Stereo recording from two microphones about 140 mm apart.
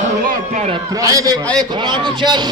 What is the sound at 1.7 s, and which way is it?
Speech, 35° right (ahead or behind).